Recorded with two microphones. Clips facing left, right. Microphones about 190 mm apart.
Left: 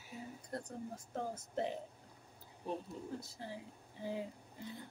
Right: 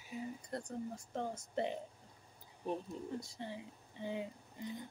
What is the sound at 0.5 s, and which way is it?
Speech, 5° left (ahead or behind).